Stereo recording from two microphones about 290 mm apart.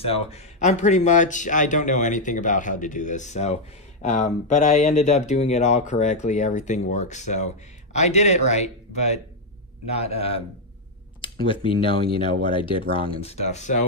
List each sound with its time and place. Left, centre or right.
0.0 s speech: left
11.2 s a sound: centre
11.6 s speech: centre